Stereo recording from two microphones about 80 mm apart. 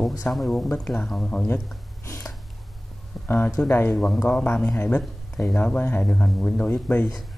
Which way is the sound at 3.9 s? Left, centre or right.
Centre.